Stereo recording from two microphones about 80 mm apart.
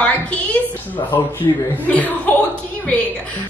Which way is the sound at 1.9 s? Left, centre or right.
Centre.